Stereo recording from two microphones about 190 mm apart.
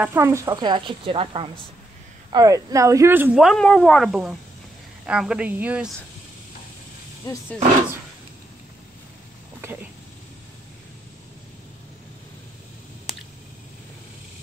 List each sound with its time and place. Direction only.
0.0 s a woman's voice: 15° right (ahead or behind)
2.3 s speech: 15° right (ahead or behind)